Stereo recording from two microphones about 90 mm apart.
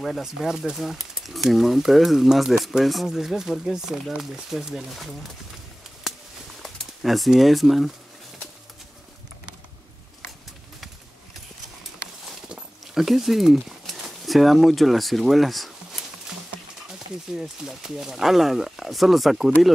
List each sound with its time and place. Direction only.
0.0 s speech: 5° right (ahead or behind)
6.6 s speech: centre (ahead or behind)
12.3 s a sound: 5° right (ahead or behind)
17.4 s speech: 5° right (ahead or behind)